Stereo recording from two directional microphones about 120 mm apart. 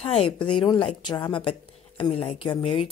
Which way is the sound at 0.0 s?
55° left (ahead or behind).